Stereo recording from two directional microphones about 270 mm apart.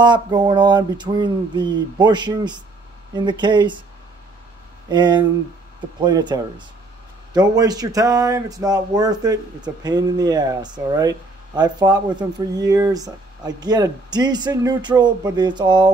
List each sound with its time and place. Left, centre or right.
0.0 s speech: centre
4.8 s speech: centre